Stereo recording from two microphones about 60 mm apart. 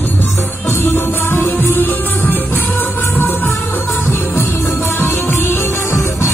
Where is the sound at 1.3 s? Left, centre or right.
Left.